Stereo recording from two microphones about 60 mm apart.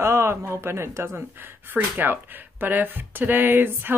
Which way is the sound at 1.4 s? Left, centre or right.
Right.